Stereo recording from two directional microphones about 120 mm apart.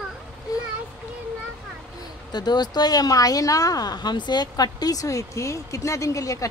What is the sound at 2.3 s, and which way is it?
A woman's voice, 35° left (ahead or behind).